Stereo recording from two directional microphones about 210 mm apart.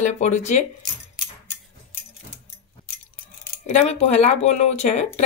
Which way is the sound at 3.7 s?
30° left (ahead or behind).